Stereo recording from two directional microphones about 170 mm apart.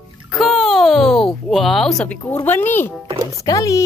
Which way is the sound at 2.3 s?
10° left (ahead or behind).